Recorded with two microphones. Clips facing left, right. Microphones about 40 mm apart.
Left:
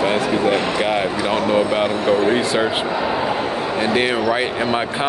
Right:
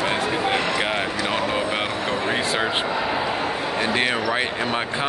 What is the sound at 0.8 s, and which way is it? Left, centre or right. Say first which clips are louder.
Speech: left 4 dB; centre.